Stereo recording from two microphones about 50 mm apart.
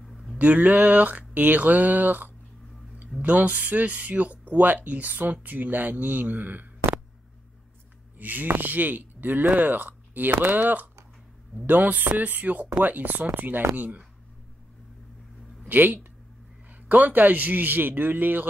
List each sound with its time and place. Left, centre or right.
0.4 s speech: right
8.2 s speech: right
15.7 s speech: right